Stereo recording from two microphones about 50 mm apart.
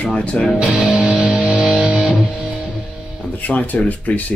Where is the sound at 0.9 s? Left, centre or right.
Centre.